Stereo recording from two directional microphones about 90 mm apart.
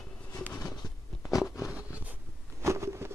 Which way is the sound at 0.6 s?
50° left (ahead or behind).